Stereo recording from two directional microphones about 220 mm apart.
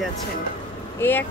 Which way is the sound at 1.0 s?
10° left (ahead or behind).